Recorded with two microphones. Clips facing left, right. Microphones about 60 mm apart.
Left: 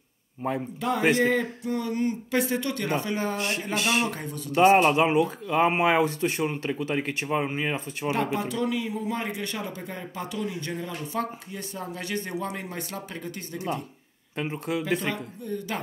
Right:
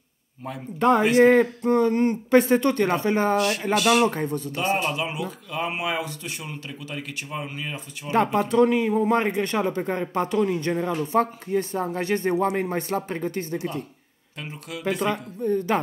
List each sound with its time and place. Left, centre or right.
0.4 s speech: left
0.7 s speech: right
3.3 s speech: left
4.0 s speech: right
4.8 s speech: left
8.4 s speech: right
11.0 s speech: right
13.6 s speech: left
15.4 s speech: right